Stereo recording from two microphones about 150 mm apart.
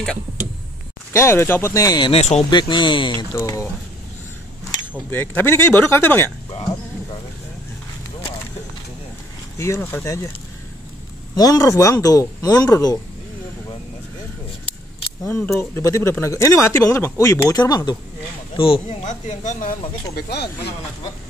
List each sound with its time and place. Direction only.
1.1 s speech: 15° left (ahead or behind)
2.1 s speech: 45° left (ahead or behind)
2.5 s speech: 30° left (ahead or behind)
3.3 s speech: 20° left (ahead or behind)
5.1 s speech: 10° left (ahead or behind)
9.6 s speech: 15° left (ahead or behind)
11.3 s speech: 25° left (ahead or behind)
15.2 s speech: 15° left (ahead or behind)
18.6 s speech: 40° left (ahead or behind)
20.2 s speech: 90° left